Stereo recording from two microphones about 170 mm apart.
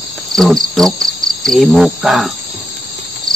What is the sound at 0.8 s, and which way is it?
Cricket, centre (ahead or behind).